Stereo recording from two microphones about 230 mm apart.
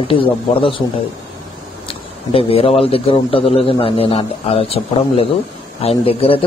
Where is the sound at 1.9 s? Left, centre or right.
Left.